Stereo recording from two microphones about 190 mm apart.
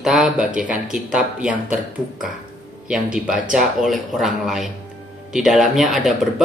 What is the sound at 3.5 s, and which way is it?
Speech, centre (ahead or behind).